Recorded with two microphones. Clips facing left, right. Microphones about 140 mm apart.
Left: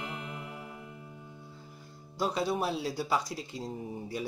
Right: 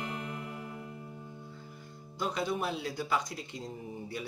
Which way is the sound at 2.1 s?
35° left (ahead or behind).